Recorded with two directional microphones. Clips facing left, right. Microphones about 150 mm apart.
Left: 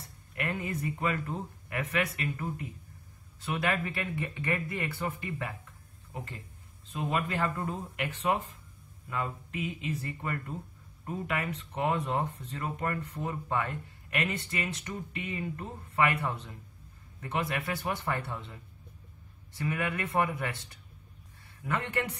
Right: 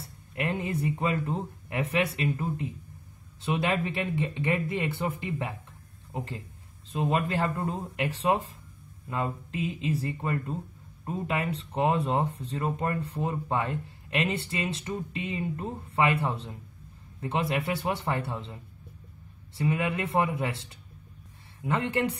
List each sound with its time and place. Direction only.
0.4 s speech: 30° right (ahead or behind)
7.0 s speech: 35° right (ahead or behind)
19.5 s speech: 25° right (ahead or behind)